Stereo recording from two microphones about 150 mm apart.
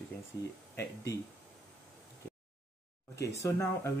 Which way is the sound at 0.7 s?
20° left (ahead or behind).